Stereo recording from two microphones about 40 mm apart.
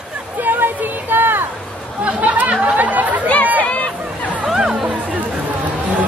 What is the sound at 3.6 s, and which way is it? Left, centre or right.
Hubbub, left.